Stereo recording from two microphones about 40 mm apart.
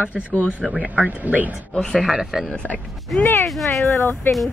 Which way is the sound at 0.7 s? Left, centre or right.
Right.